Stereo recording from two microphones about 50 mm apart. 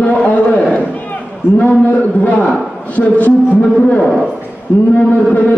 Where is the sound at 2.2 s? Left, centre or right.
Left.